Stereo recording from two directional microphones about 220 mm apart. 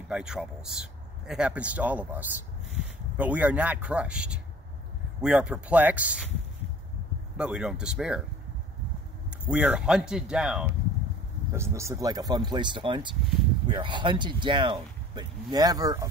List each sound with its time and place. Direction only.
0.1 s speech: 5° right (ahead or behind)
7.3 s speech: 5° right (ahead or behind)
9.5 s speech: 5° right (ahead or behind)